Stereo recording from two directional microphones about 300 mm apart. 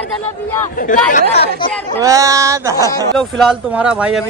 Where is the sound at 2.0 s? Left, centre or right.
Centre.